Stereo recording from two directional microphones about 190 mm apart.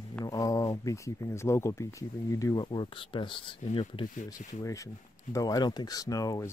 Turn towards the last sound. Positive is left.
turn(degrees=20)  # may be behind; listen again after turning